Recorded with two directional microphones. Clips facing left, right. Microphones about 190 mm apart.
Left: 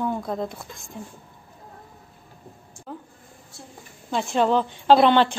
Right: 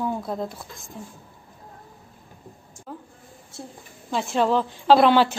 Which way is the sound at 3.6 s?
30° right (ahead or behind).